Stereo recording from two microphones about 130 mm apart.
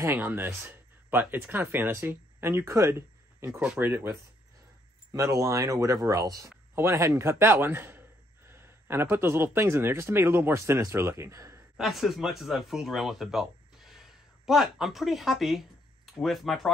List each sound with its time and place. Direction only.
0.0 s speech: 15° right (ahead or behind)
11.7 s speech: centre (ahead or behind)